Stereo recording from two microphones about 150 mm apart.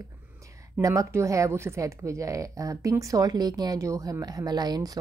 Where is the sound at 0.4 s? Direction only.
20° right (ahead or behind).